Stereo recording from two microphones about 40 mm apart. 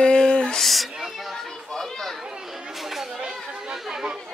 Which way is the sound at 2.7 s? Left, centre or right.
Centre.